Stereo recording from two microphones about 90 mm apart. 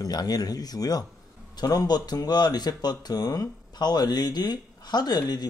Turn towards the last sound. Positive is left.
turn(degrees=50)  # may be behind; listen again after turning